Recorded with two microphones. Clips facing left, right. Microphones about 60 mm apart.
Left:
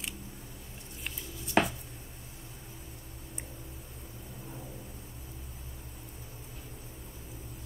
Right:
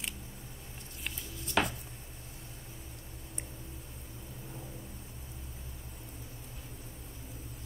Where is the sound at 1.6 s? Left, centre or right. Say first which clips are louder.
Left 3 dB; left.